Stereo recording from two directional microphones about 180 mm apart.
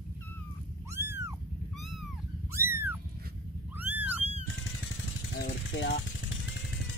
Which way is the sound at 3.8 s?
10° right (ahead or behind).